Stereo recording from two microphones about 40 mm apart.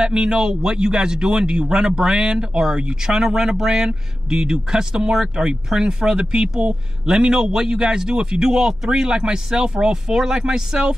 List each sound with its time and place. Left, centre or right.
0.0 s a man's voice: right